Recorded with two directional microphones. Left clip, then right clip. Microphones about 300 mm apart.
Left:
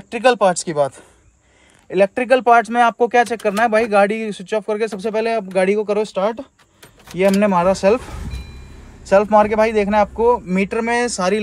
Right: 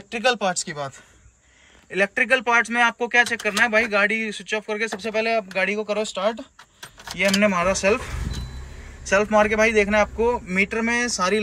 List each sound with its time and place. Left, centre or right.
0.1 s speech: centre
9.1 s speech: centre